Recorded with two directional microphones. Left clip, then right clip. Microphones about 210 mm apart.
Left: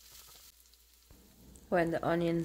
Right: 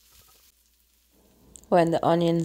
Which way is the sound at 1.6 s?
30° right (ahead or behind).